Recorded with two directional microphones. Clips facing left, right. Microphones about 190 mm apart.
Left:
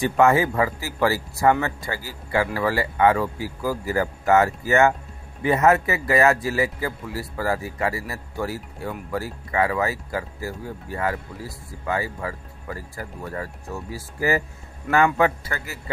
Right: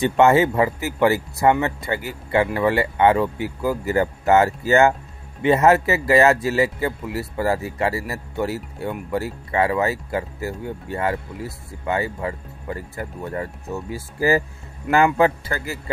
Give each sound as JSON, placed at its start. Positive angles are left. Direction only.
{"t": 0.0, "sound": "speech", "side_deg": -25}